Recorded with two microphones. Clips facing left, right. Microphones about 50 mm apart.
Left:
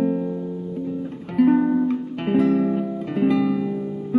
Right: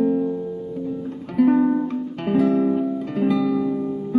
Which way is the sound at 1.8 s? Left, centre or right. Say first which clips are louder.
Left 2 dB; left.